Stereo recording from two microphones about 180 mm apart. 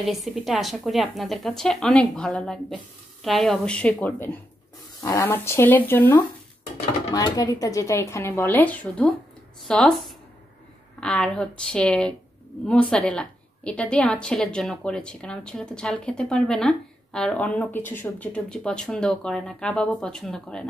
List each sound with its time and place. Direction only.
0.0 s a woman's voice: centre (ahead or behind)